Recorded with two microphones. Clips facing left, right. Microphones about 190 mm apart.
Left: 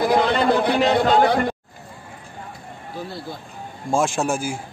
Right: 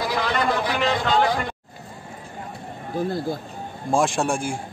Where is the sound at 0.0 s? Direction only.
55° left (ahead or behind).